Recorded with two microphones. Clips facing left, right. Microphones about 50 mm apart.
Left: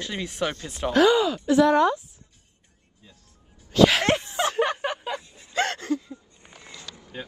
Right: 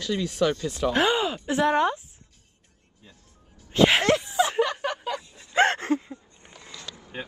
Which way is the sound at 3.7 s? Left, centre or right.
Right.